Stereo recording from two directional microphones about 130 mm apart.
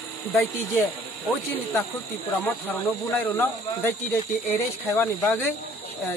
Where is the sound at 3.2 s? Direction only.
15° left (ahead or behind).